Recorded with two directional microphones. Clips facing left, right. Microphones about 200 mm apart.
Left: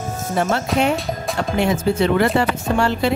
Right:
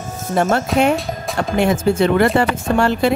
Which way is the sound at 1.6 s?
50° right (ahead or behind).